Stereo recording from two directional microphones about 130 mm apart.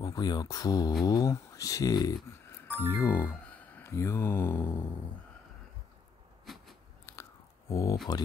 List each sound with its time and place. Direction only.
0.0 s speech: 30° left (ahead or behind)
3.0 s speech: 15° left (ahead or behind)
6.4 s a sound: centre (ahead or behind)
7.1 s biting: 20° left (ahead or behind)
7.7 s speech: 25° left (ahead or behind)